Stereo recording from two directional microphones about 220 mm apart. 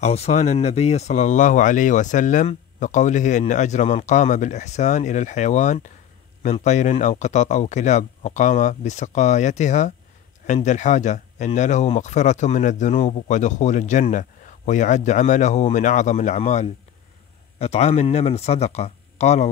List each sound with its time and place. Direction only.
0.0 s speech: 30° left (ahead or behind)